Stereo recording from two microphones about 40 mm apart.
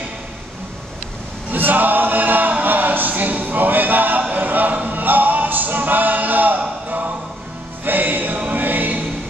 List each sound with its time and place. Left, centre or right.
1.5 s choir: right
7.8 s music: right